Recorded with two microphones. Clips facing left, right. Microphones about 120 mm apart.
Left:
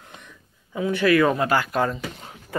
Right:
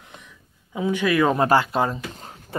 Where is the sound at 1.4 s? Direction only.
30° right (ahead or behind).